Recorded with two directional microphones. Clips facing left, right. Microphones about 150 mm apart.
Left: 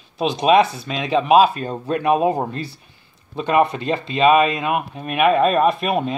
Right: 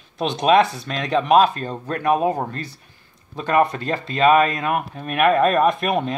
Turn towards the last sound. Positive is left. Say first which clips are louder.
# left 1 dB
turn(degrees=0)  # may be behind; listen again after turning